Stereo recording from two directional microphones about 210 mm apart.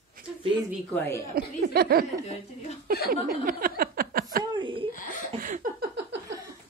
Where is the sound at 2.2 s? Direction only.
30° left (ahead or behind).